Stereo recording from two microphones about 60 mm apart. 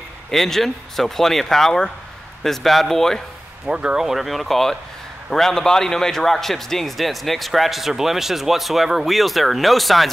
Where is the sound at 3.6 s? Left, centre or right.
Centre.